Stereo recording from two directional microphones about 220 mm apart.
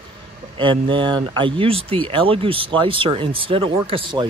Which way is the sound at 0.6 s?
20° right (ahead or behind).